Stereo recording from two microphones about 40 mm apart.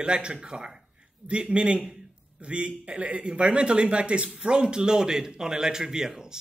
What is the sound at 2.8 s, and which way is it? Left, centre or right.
Speech, right.